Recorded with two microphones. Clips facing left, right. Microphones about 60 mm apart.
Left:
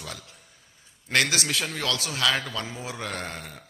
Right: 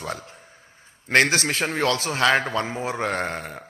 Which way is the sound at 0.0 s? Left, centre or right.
Right.